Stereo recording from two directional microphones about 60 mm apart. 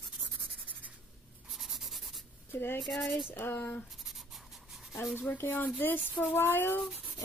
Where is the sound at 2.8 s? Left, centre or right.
Centre.